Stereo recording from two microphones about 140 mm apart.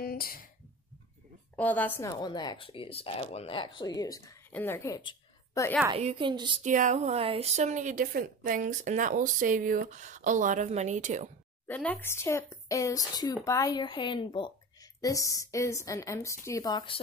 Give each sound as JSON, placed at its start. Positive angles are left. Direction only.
{"t": 0.0, "sound": "a sound", "side_deg": 90}
{"t": 1.6, "sound": "speech", "side_deg": 10}
{"t": 4.5, "sound": "speech", "side_deg": 15}
{"t": 4.9, "sound": "a sound", "side_deg": 25}
{"t": 5.9, "sound": "a woman's voice", "side_deg": -40}
{"t": 6.6, "sound": "speech", "side_deg": -65}
{"t": 7.1, "sound": "a woman's voice", "side_deg": -45}
{"t": 11.6, "sound": "speech", "side_deg": 10}
{"t": 15.0, "sound": "speech", "side_deg": 25}